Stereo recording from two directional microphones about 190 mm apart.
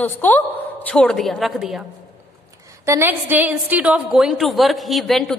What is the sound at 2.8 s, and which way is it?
A woman's voice, 10° right (ahead or behind).